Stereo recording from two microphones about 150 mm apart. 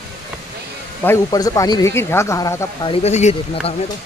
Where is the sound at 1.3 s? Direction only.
25° left (ahead or behind).